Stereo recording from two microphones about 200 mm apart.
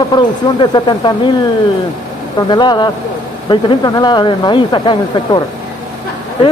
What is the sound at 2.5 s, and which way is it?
Speech, 20° left (ahead or behind).